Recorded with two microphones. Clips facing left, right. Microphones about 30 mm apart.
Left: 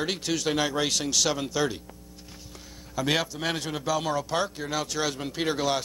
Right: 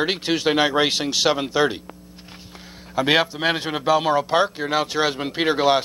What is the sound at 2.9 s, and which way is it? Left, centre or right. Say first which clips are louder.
Speech: right 8 dB; right.